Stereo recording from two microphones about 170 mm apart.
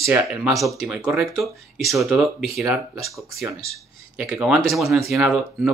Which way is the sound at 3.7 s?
5° right (ahead or behind).